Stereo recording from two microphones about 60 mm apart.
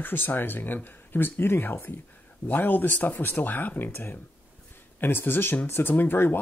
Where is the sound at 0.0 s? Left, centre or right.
Left.